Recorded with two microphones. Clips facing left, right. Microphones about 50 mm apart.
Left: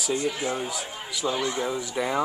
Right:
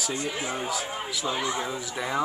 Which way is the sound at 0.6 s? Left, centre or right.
Centre.